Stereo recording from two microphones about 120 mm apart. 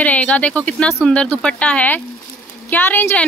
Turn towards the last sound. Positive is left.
turn(degrees=15)  # may be behind; listen again after turning